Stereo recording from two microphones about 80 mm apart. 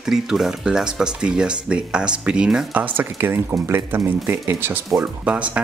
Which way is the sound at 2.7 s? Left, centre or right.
Right.